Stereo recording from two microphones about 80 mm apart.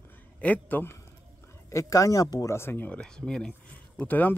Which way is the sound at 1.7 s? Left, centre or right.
Left.